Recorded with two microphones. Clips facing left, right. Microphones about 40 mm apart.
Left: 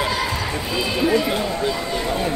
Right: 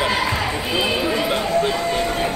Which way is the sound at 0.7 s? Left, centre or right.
Right.